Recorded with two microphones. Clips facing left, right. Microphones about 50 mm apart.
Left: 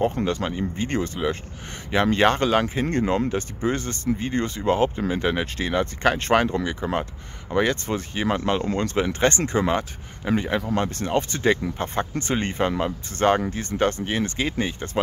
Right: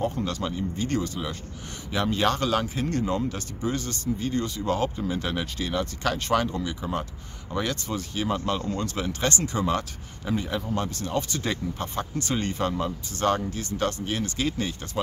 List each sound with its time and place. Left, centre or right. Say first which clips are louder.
0.0 s speech: left 5 dB; left